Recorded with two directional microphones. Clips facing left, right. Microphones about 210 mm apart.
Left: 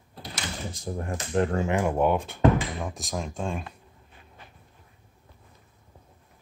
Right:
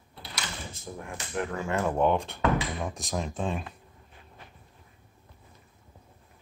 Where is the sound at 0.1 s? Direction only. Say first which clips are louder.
Left 4 dB; 45° left (ahead or behind).